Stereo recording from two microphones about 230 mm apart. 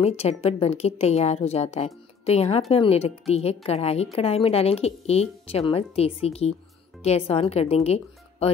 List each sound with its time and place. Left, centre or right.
0.0 s a woman's voice: left